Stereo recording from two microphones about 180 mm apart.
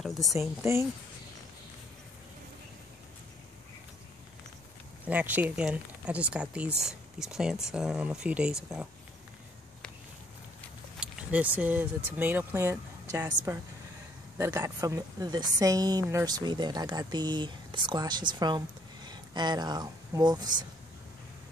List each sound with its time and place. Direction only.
0.0 s speech: centre (ahead or behind)
5.0 s speech: 10° right (ahead or behind)
11.0 s speech: 5° right (ahead or behind); by 20.6 s 25° right (ahead or behind)